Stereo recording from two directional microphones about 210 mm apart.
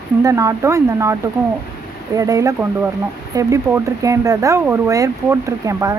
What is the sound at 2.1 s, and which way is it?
A woman's voice, 15° right (ahead or behind).